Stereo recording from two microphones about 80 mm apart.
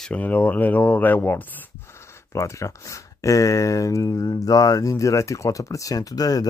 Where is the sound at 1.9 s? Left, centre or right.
Left.